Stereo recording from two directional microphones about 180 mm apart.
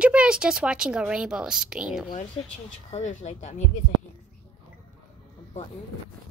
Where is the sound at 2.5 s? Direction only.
40° left (ahead or behind).